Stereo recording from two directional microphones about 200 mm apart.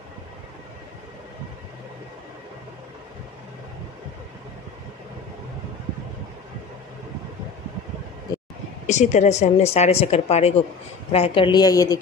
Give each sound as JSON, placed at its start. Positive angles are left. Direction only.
{"t": 8.8, "sound": "a woman's voice", "side_deg": 35}